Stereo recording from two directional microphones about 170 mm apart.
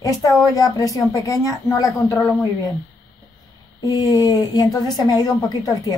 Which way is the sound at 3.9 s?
25° left (ahead or behind).